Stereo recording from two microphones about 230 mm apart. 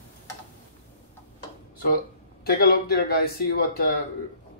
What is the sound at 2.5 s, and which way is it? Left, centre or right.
Speech, left.